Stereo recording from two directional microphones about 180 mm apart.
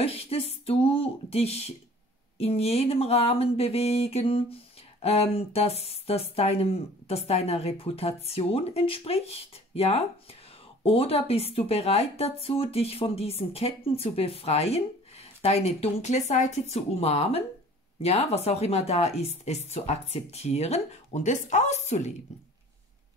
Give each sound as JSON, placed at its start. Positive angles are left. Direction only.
{"t": 0.0, "sound": "a woman's voice", "side_deg": 35}